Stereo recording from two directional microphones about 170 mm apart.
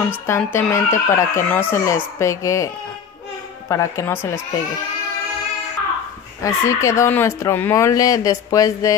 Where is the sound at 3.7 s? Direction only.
20° left (ahead or behind).